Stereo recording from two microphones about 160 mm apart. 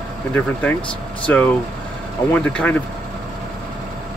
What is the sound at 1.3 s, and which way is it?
Speech, 10° left (ahead or behind).